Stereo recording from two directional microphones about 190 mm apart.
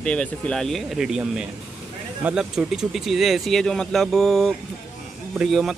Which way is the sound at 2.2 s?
5° right (ahead or behind).